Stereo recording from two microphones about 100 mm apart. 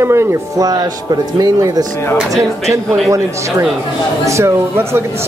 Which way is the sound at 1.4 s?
40° right (ahead or behind).